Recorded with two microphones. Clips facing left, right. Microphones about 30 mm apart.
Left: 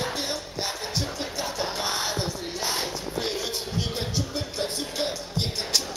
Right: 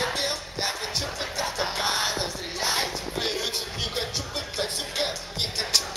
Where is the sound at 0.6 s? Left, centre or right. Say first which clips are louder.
Right 2 dB; centre.